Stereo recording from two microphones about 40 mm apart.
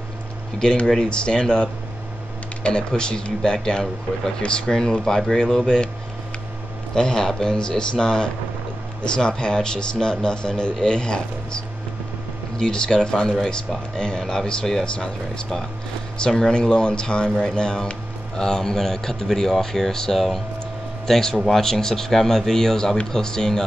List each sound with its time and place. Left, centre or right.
0.8 s a man's voice: centre
7.0 s a man's voice: centre
16.3 s a man's voice: centre